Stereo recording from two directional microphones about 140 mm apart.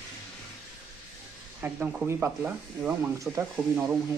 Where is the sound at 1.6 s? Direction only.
10° right (ahead or behind).